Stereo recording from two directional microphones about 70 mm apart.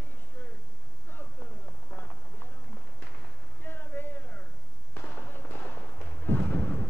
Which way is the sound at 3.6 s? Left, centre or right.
Left.